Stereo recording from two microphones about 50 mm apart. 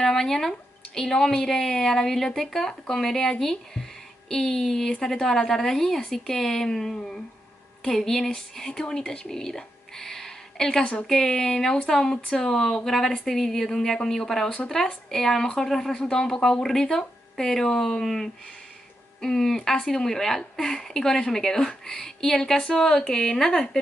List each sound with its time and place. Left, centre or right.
0.0 s speech: centre
10.8 s speech: left
11.1 s speech: centre
12.2 s speech: left
12.4 s speech: centre